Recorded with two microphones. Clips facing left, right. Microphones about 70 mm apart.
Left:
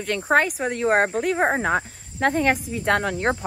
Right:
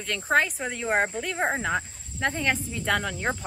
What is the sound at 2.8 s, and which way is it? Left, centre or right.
Speech, left.